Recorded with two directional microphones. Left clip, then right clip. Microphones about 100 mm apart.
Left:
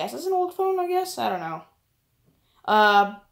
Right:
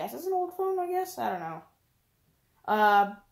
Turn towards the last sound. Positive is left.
turn(degrees=10)  # may be behind; listen again after turning